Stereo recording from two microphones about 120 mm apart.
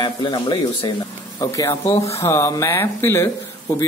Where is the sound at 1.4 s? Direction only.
25° left (ahead or behind).